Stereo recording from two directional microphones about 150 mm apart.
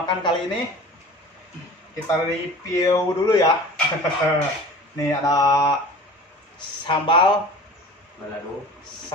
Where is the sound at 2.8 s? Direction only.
25° left (ahead or behind).